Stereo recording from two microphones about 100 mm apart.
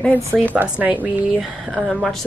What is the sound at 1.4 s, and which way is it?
Speech, centre (ahead or behind).